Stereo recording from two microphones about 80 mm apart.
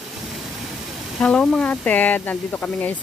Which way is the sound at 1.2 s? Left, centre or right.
Centre.